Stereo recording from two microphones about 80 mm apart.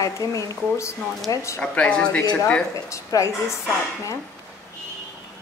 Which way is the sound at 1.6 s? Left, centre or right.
Centre.